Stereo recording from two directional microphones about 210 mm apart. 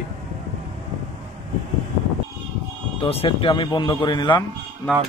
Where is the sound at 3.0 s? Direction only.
25° left (ahead or behind).